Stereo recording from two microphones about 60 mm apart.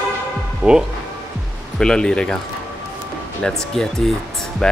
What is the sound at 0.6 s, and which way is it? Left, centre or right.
Speech, right.